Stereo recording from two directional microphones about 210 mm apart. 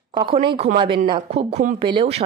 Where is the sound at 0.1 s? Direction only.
25° right (ahead or behind).